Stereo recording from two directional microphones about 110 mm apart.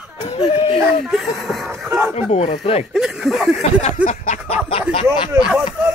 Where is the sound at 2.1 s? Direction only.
75° left (ahead or behind).